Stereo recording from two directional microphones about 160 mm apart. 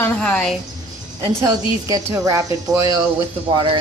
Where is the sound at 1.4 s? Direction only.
20° right (ahead or behind).